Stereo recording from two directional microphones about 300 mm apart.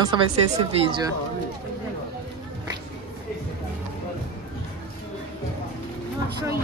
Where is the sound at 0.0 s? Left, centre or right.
Centre.